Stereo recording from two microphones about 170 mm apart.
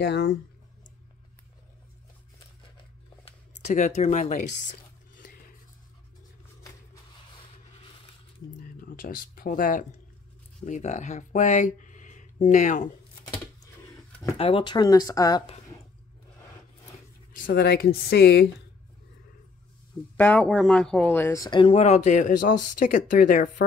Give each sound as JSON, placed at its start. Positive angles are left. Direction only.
{"t": 0.0, "sound": "speech", "side_deg": 75}
{"t": 3.5, "sound": "speech", "side_deg": 45}
{"t": 8.5, "sound": "speech", "side_deg": 55}
{"t": 14.4, "sound": "speech", "side_deg": 30}
{"t": 17.4, "sound": "speech", "side_deg": 75}
{"t": 20.2, "sound": "speech", "side_deg": 5}